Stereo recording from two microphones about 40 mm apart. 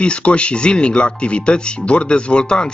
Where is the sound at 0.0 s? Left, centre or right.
Left.